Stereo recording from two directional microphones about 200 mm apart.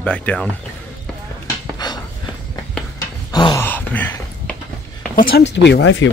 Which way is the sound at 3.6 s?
10° left (ahead or behind).